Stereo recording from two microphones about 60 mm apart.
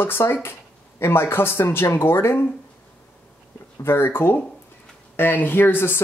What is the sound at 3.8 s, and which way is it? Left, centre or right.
Speech, left.